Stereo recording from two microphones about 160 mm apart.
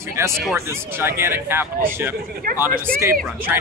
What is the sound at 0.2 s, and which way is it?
Speech, 20° right (ahead or behind).